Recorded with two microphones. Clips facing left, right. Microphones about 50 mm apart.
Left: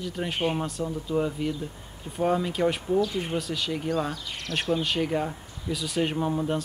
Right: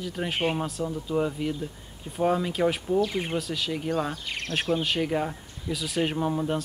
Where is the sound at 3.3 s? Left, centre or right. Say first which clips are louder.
Even; centre.